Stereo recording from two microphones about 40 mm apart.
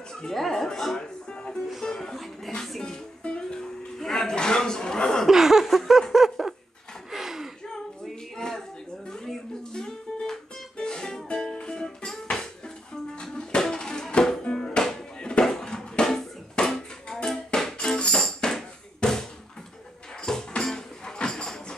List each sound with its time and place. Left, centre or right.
0.1 s speech: centre
2.8 s music: left
5.3 s laughter: centre
6.4 s dog: centre
7.1 s a sound: centre
7.6 s a sound: centre
9.6 s music: centre
17.7 s music: left
18.4 s hammer: centre
19.0 s a sound: left
20.2 s music: centre